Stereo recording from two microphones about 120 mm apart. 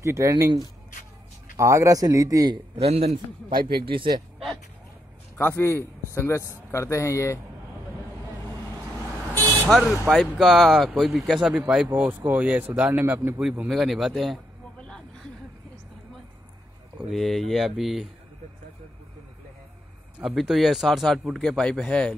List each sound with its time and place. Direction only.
0.0 s speech: 25° right (ahead or behind)
1.6 s speech: 25° right (ahead or behind)
2.8 s speech: 60° right (ahead or behind)
3.4 s speech: 45° right (ahead or behind)
5.4 s a man's voice: 20° left (ahead or behind)
9.7 s speech: 5° right (ahead or behind)
13.4 s speech: centre (ahead or behind)
17.0 s speech: centre (ahead or behind)
20.2 s speech: 5° right (ahead or behind)